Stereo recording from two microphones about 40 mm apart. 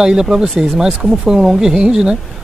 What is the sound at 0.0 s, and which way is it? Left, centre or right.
Speech, centre.